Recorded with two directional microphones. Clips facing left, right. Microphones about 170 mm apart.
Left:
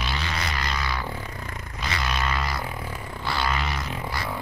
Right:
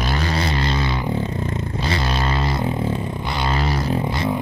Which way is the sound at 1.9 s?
30° right (ahead or behind).